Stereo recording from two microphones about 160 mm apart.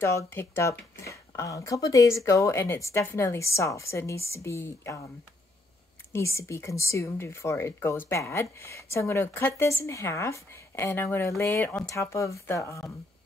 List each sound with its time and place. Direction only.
0.0 s speech: 15° left (ahead or behind)
6.1 s speech: 15° left (ahead or behind)